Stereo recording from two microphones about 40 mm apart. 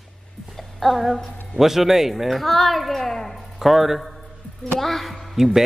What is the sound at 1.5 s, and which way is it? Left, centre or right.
Speech, centre.